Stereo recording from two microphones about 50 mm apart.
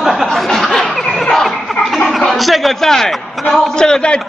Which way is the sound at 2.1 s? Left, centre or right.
Centre.